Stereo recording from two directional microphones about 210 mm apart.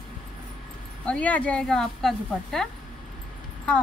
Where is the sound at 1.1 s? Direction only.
5° left (ahead or behind).